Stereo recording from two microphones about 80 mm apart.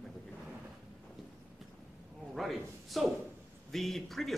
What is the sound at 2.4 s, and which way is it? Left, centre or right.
Speech, centre.